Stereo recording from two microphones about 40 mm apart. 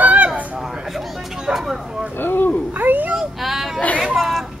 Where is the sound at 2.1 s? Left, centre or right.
Left.